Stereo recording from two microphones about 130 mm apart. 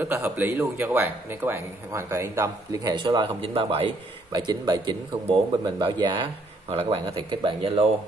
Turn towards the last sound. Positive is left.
turn(degrees=-45)  # may be behind; listen again after turning